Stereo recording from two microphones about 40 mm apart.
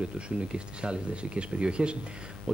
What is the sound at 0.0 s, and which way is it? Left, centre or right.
Speech, right.